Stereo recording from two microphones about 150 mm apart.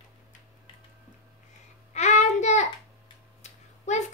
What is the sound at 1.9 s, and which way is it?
Child singing, 50° left (ahead or behind).